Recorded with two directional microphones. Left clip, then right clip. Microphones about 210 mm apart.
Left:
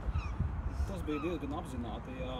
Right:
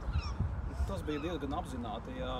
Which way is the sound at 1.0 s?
45° right (ahead or behind).